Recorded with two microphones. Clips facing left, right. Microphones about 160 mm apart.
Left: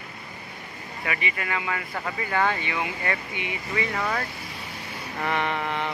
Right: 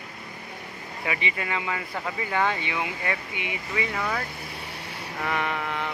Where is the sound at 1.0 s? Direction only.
20° right (ahead or behind).